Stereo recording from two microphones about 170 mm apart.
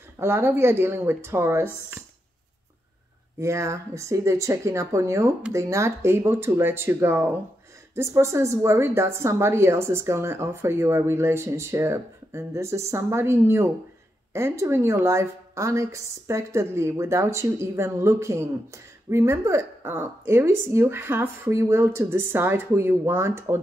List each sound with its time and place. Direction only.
0.2 s a woman's voice: 15° right (ahead or behind)
3.3 s a woman's voice: 15° right (ahead or behind)